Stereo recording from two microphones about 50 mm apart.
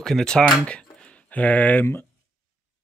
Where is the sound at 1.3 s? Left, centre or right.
Left.